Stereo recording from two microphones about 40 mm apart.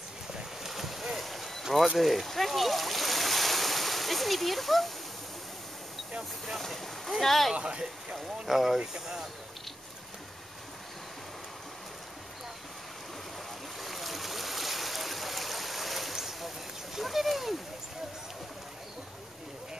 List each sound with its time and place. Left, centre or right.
0.4 s boat: centre
2.0 s splash: centre
6.6 s speech: centre
7.5 s speech: right
8.5 s speech: centre
13.7 s stream: centre